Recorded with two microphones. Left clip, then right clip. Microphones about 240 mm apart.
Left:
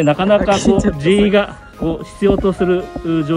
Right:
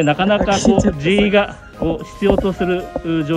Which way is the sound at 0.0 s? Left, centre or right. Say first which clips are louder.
Left 2 dB; centre.